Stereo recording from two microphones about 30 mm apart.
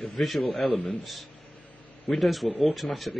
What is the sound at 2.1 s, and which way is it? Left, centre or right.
Speech, centre.